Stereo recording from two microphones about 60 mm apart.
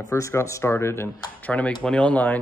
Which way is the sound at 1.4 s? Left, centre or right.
Left.